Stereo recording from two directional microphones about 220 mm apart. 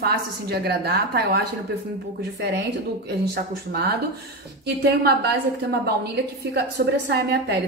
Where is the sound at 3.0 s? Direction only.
45° right (ahead or behind).